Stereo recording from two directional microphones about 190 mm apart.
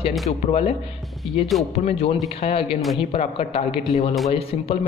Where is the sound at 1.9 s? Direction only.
30° left (ahead or behind).